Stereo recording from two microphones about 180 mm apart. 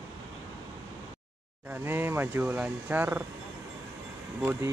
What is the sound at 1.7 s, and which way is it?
Speech, 10° right (ahead or behind).